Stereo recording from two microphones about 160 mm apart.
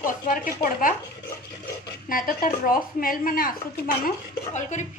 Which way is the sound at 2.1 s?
60° left (ahead or behind).